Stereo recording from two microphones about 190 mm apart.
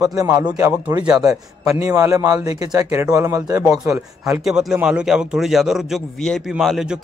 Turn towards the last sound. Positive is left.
turn(degrees=-5)  # may be behind; listen again after turning